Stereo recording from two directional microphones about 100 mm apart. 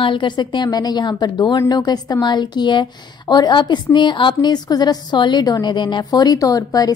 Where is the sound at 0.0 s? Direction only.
55° left (ahead or behind).